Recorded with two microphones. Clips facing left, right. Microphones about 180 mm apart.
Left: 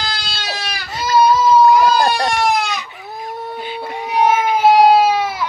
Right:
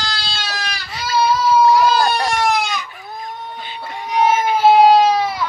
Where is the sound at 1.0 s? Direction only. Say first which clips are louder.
Left 4 dB; 40° left (ahead or behind).